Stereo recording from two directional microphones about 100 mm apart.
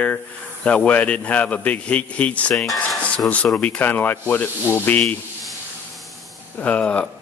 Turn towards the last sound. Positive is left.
turn(degrees=10)  # may be behind; listen again after turning